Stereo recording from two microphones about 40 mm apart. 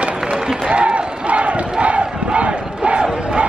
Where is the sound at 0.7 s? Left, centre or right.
Right.